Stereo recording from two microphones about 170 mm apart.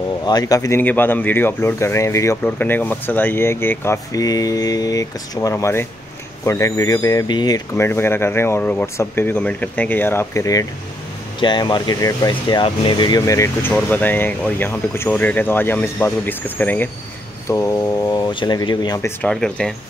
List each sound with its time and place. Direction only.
0.2 s speech: 25° left (ahead or behind)
18.9 s speech: 15° left (ahead or behind)